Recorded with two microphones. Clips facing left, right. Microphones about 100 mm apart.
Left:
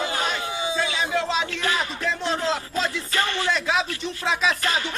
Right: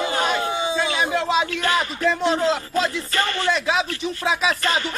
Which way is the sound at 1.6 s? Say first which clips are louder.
Right 4 dB; centre (ahead or behind).